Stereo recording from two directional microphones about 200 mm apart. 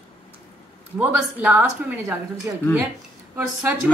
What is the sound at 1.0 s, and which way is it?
A woman's voice, 5° right (ahead or behind).